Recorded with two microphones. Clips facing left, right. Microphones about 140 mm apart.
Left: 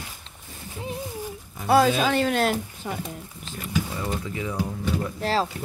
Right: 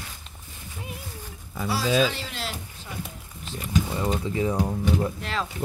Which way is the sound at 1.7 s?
55° left (ahead or behind).